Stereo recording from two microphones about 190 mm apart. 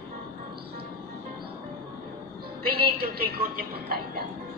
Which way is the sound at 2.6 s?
55° right (ahead or behind).